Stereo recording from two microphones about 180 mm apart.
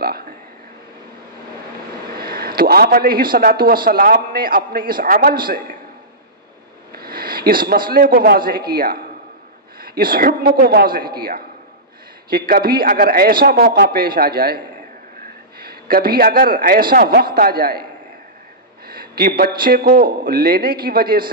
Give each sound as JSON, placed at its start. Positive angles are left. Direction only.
{"t": 2.1, "sound": "a man's voice", "side_deg": -60}
{"t": 6.9, "sound": "a man's voice", "side_deg": -55}
{"t": 12.3, "sound": "a man's voice", "side_deg": -55}
{"t": 15.6, "sound": "a man's voice", "side_deg": -55}
{"t": 18.9, "sound": "a man's voice", "side_deg": -55}